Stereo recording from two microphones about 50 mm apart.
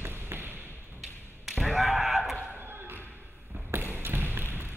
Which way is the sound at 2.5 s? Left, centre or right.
Right.